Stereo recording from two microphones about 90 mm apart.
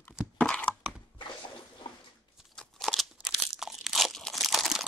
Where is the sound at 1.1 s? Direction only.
60° left (ahead or behind).